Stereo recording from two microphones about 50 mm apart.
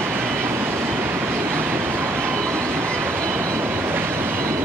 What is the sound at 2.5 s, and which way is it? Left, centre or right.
Train, right.